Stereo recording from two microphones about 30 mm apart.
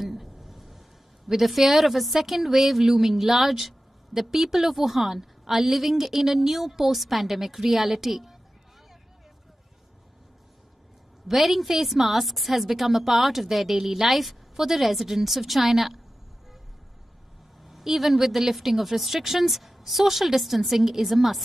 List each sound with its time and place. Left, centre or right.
0.0 s a woman's voice: centre
11.2 s a woman's voice: centre
17.6 s a woman's voice: centre